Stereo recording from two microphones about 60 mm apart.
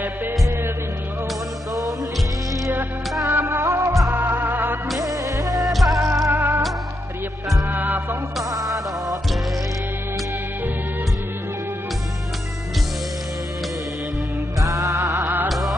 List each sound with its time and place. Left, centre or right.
3.3 s music: right
4.1 s music: right
5.0 s music: right
5.6 s music: centre
6.2 s music: right
7.6 s music: right
8.5 s music: right
14.6 s music: right
15.4 s music: centre